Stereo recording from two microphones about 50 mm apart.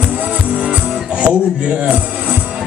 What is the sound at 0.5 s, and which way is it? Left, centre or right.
Music, right.